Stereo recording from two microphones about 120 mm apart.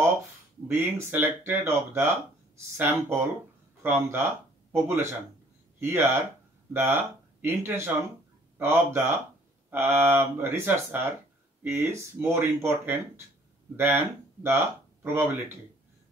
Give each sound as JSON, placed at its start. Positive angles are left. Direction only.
{"t": 0.7, "sound": "speech", "side_deg": -20}